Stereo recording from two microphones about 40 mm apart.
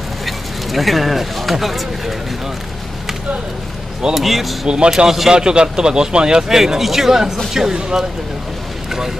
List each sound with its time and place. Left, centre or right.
0.2 s speech: centre
4.1 s speech: centre
4.6 s speech: right
4.9 s speech: centre
5.3 s speech: right
6.6 s speech: centre